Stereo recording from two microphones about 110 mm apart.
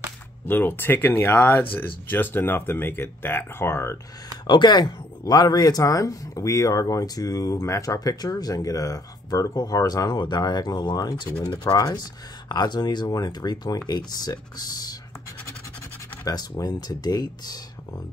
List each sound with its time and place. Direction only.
0.5 s speech: 20° left (ahead or behind)
4.5 s speech: 40° left (ahead or behind)
16.3 s speech: 35° left (ahead or behind)